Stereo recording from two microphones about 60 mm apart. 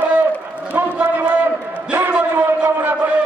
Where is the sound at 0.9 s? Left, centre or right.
Right.